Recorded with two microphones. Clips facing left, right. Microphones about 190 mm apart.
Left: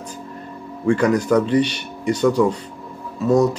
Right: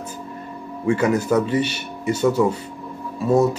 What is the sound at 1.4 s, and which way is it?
Speech, 5° right (ahead or behind).